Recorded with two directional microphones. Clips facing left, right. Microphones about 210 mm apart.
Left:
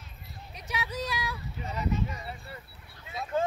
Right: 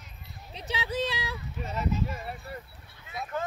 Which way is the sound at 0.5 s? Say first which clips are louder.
Right 4 dB; 25° right (ahead or behind).